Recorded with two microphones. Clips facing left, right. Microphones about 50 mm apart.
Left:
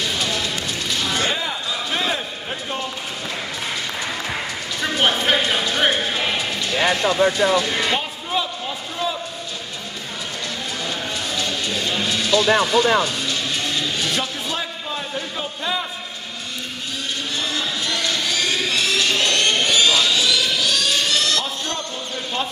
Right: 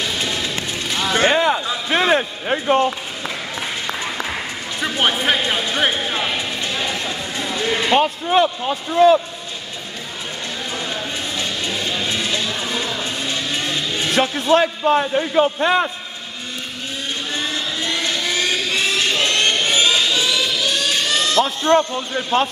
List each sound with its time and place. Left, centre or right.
0.2 s music: right
1.3 s a sound: right
5.0 s speech: centre
6.8 s speech: left
7.9 s speech: right
12.1 s a sound: right
12.7 s speech: left
14.1 s a man's voice: right
17.8 s a sound: right